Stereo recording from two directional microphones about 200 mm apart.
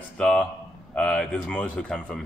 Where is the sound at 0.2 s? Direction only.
5° left (ahead or behind).